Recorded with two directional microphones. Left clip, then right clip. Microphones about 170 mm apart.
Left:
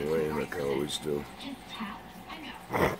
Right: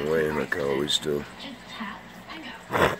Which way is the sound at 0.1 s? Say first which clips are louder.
Right 7 dB; 15° right (ahead or behind).